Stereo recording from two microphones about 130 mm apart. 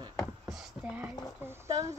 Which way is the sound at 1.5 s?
25° right (ahead or behind).